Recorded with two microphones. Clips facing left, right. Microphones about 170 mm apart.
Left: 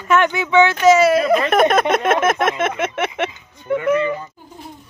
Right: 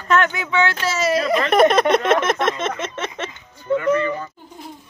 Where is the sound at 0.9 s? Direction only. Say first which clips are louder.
Left 5 dB; 55° left (ahead or behind).